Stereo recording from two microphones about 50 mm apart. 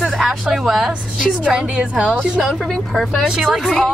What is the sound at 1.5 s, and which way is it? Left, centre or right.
Speech, centre.